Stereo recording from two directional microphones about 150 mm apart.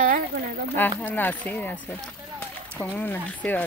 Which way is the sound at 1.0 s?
10° left (ahead or behind).